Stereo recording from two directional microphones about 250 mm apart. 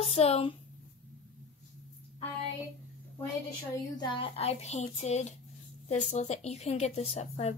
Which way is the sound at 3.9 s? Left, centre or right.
Centre.